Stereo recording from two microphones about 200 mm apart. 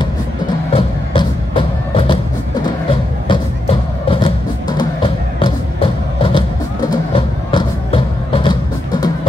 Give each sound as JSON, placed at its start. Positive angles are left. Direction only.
{"t": 0.7, "sound": "music", "side_deg": 25}